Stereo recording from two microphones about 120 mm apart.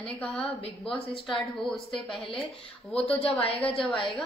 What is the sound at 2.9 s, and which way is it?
Speech, 55° left (ahead or behind).